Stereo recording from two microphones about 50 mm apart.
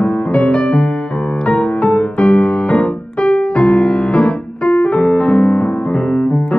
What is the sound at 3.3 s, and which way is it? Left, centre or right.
Piano, left.